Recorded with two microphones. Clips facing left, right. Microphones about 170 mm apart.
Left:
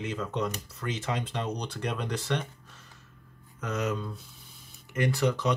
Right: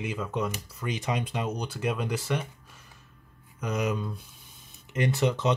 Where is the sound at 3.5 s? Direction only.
10° right (ahead or behind).